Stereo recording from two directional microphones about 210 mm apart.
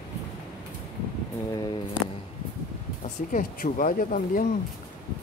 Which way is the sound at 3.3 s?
40° left (ahead or behind).